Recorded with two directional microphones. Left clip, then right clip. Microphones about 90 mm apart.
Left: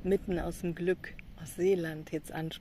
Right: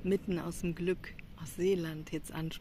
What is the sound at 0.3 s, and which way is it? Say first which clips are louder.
Speech: left 3 dB; 25° right (ahead or behind).